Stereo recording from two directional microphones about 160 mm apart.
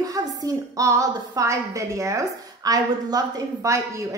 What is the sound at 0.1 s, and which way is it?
A woman's voice, 20° right (ahead or behind).